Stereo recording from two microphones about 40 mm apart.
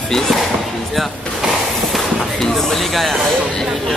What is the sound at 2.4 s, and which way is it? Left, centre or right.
Speech, centre.